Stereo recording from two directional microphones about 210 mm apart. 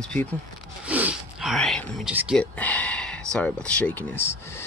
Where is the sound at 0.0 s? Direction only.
5° left (ahead or behind).